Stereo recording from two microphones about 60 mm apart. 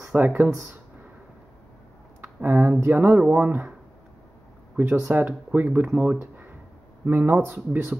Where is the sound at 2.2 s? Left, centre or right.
Right.